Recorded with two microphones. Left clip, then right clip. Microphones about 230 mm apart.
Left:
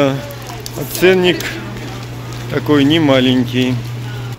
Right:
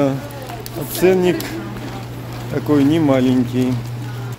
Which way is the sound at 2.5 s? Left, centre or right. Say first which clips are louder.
Left 3 dB; centre.